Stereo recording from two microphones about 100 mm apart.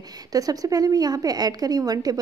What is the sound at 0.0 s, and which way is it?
A woman's voice, 40° right (ahead or behind).